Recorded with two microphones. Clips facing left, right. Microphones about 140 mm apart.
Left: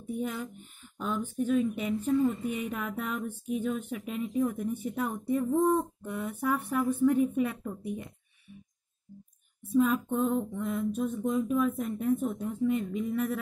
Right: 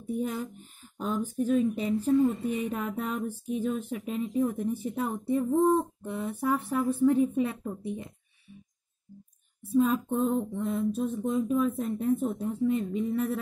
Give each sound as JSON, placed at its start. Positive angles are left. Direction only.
{"t": 0.0, "sound": "speech", "side_deg": -35}
{"t": 5.6, "sound": "a sound", "side_deg": -25}
{"t": 9.6, "sound": "speech", "side_deg": -30}